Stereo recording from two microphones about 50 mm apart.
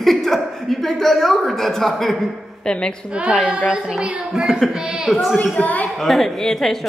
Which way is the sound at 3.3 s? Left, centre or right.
Centre.